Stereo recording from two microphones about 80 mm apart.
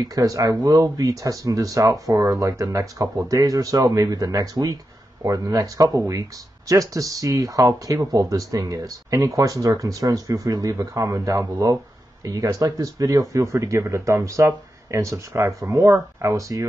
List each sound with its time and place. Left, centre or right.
0.1 s speech: right